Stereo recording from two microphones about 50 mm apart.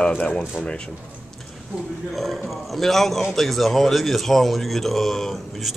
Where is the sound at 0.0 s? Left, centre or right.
Left.